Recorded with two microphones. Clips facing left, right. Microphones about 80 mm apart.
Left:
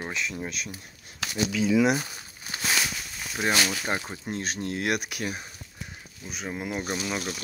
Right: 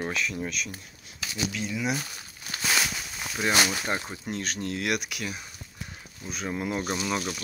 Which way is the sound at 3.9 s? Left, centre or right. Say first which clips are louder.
Even; left.